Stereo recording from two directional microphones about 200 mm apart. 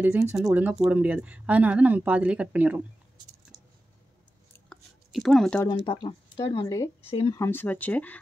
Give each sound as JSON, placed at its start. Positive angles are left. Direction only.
{"t": 0.0, "sound": "a woman's voice", "side_deg": -10}
{"t": 4.6, "sound": "a sound", "side_deg": 0}
{"t": 5.9, "sound": "speech", "side_deg": 25}
{"t": 7.3, "sound": "speech", "side_deg": 10}